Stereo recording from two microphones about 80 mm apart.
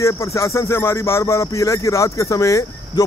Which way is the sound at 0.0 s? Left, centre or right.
Left.